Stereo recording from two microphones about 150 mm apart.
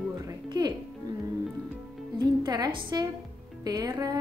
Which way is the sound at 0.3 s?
30° right (ahead or behind).